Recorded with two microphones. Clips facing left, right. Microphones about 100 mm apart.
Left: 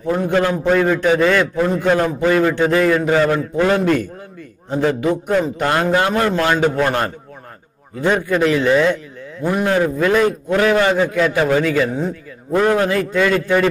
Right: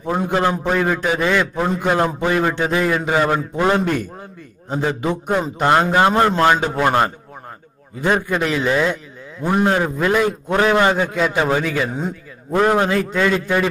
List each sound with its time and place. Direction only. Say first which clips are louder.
0.1 s a man's voice: left 2 dB; 20° right (ahead or behind)
8.6 s speech: left 4 dB; 5° right (ahead or behind)
9.6 s a man's voice: left 1 dB; 25° right (ahead or behind)